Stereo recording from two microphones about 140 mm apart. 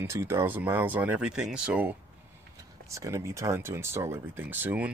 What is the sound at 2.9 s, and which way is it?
Speech, 20° right (ahead or behind).